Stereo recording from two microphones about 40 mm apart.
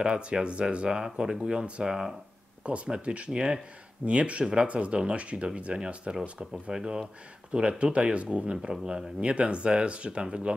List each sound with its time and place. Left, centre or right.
0.0 s speech: right
0.9 s speech: centre
2.6 s speech: right
4.0 s speech: right
6.5 s speech: centre
7.5 s speech: right